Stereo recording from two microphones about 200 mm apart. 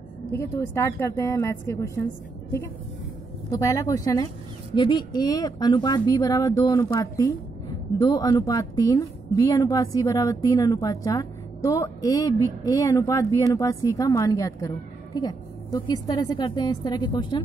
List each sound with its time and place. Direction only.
0.3 s a woman's voice: 15° left (ahead or behind)
3.4 s a woman's voice: 15° left (ahead or behind)